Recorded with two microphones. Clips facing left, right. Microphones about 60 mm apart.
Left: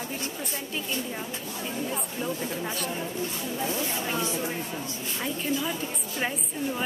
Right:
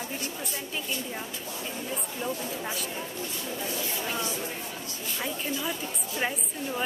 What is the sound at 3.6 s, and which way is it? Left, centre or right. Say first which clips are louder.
Speech: left 4 dB; left.